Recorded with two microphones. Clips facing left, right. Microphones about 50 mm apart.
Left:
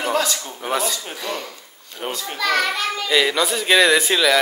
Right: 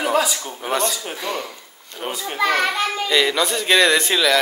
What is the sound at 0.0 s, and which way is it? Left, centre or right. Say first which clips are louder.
Speech: right 2 dB; centre.